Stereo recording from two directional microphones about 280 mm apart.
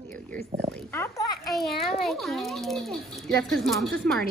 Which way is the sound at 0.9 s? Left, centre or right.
Centre.